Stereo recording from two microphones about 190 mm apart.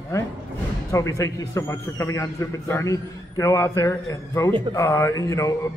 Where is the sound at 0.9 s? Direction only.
15° left (ahead or behind).